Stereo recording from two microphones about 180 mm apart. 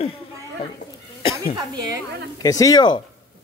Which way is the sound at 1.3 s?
20° right (ahead or behind).